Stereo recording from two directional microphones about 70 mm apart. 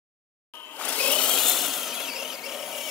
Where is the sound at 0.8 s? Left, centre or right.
Centre.